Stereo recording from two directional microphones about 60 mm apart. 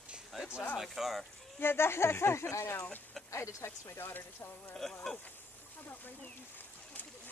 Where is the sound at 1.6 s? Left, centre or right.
Left.